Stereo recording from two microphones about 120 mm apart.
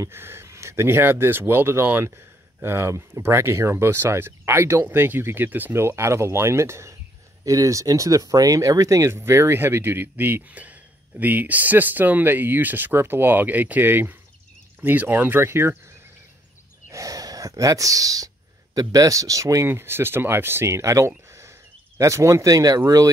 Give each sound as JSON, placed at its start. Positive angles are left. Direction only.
{"t": 0.0, "sound": "speech", "side_deg": -20}
{"t": 16.9, "sound": "speech", "side_deg": -30}
{"t": 21.3, "sound": "a sound", "side_deg": -25}
{"t": 22.8, "sound": "speech", "side_deg": -30}